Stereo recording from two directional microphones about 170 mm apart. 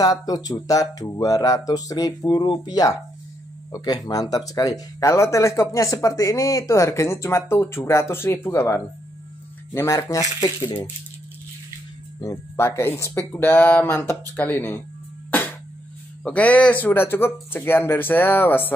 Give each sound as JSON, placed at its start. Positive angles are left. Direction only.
{"t": 0.0, "sound": "speech", "side_deg": 20}
{"t": 12.2, "sound": "speech", "side_deg": 15}
{"t": 16.3, "sound": "speech", "side_deg": 10}